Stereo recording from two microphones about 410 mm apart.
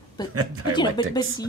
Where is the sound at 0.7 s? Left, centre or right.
Centre.